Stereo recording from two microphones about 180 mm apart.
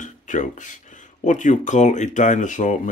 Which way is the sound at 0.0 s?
45° left (ahead or behind).